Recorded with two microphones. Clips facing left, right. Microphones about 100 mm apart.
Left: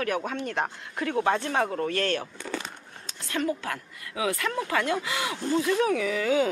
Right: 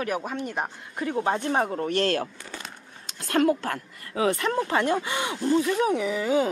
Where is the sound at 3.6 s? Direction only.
40° right (ahead or behind); by 6.4 s 25° right (ahead or behind).